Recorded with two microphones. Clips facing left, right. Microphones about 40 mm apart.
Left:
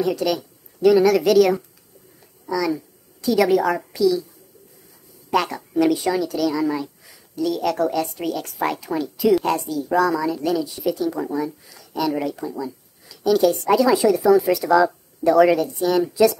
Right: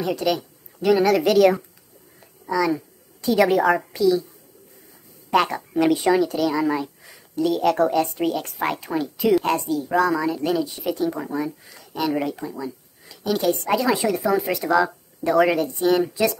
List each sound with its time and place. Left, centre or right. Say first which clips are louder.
0.0 s a woman's voice: left 1 dB; centre
5.3 s a woman's voice: right 1 dB; centre